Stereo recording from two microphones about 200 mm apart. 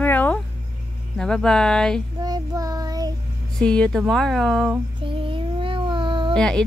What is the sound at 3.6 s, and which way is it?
Speech, 5° left (ahead or behind).